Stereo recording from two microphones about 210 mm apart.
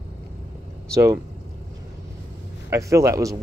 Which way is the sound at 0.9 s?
15° right (ahead or behind).